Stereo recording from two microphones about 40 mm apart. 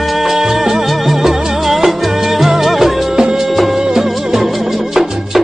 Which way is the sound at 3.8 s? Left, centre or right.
Centre.